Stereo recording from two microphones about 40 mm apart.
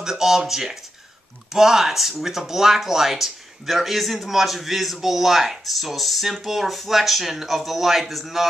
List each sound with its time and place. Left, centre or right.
0.0 s speech: centre